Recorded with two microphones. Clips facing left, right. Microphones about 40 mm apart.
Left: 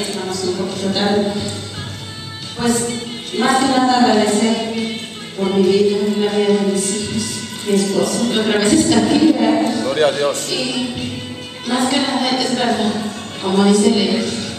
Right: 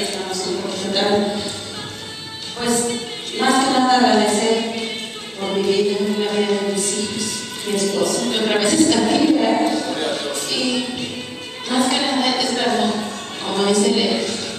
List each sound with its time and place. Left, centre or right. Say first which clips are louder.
0.0 s a sound: left 3 dB; centre
2.6 s a sound: left 2 dB; centre
5.4 s music: left 5 dB; centre
9.9 s speech: left 8 dB; left
10.5 s music: left 1 dB; centre
11.7 s a woman's voice: left 1 dB; centre